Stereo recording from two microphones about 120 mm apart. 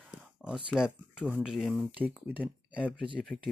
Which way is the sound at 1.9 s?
15° right (ahead or behind).